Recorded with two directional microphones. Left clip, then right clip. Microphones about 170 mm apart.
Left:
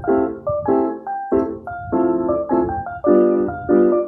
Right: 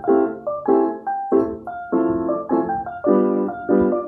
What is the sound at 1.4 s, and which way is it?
Music, 20° left (ahead or behind).